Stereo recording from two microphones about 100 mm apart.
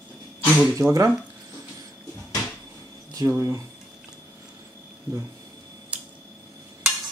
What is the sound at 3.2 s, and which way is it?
Speech, 30° right (ahead or behind).